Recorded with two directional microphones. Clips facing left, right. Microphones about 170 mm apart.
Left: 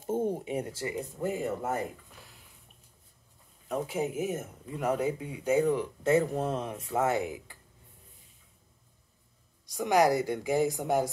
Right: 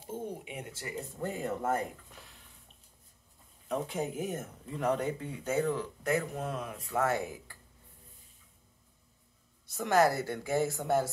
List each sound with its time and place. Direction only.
0.0 s a sound: 45° left (ahead or behind)
1.2 s speech: 5° left (ahead or behind)
3.6 s speech: 5° left (ahead or behind)
6.0 s speech: 30° left (ahead or behind)
9.7 s speech: 15° left (ahead or behind)